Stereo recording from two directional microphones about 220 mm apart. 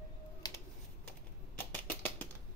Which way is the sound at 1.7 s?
10° left (ahead or behind).